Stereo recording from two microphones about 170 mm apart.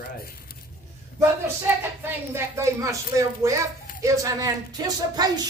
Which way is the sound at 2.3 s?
15° right (ahead or behind).